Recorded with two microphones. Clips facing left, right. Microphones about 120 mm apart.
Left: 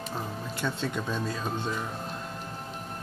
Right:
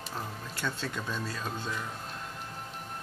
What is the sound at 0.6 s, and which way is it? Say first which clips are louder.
Speech: left 4 dB; 15° left (ahead or behind).